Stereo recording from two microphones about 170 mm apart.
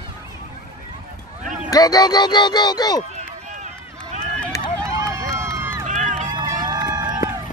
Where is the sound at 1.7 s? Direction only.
25° left (ahead or behind).